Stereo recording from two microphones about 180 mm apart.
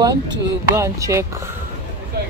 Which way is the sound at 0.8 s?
15° right (ahead or behind).